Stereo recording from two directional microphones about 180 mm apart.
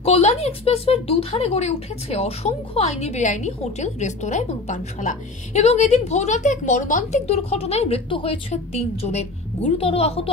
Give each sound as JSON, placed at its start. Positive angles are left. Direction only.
{"t": 0.0, "sound": "speech", "side_deg": 35}